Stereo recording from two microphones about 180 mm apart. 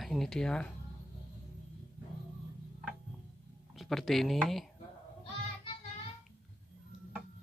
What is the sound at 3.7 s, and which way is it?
Speech, centre (ahead or behind).